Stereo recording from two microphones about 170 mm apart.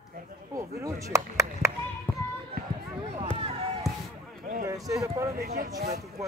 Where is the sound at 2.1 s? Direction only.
10° left (ahead or behind).